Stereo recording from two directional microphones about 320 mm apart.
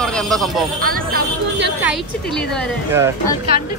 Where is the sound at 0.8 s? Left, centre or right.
Right.